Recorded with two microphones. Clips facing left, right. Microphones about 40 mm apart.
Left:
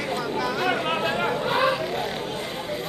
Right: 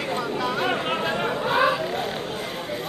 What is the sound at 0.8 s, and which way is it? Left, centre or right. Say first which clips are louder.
Chatter: left 1 dB; centre.